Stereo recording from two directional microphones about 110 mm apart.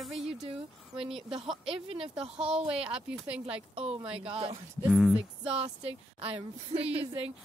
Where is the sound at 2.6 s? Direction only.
10° right (ahead or behind).